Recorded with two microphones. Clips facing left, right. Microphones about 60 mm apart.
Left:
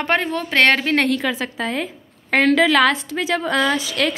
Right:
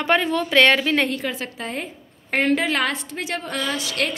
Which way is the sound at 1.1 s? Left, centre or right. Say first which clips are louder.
Left 6 dB; left.